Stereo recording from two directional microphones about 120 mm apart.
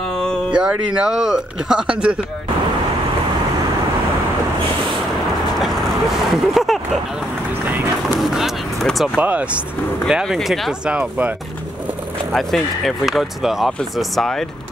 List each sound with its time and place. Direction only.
0.6 s speech: 10° right (ahead or behind)
6.3 s a sound: centre (ahead or behind)
8.2 s speech: 5° right (ahead or behind)
9.2 s speech: 10° right (ahead or behind)
12.3 s speech: centre (ahead or behind)